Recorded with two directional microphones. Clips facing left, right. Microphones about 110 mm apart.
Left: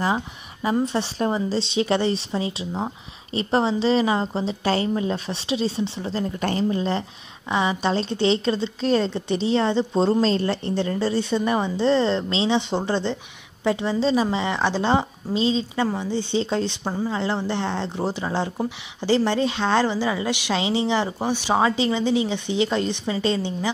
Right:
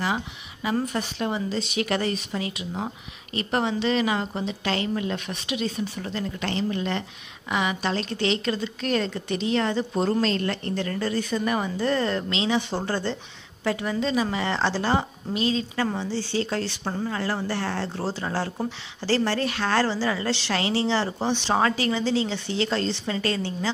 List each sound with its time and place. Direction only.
0.0 s a woman's voice: 35° left (ahead or behind); by 16.9 s 20° left (ahead or behind)
16.9 s speech: 10° left (ahead or behind)
17.2 s speech: 20° left (ahead or behind)